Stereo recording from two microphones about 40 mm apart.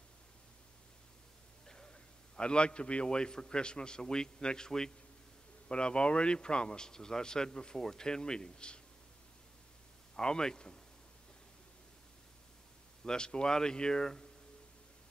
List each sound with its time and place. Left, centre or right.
1.7 s a man's voice: centre
10.1 s a man's voice: centre
13.0 s speech: left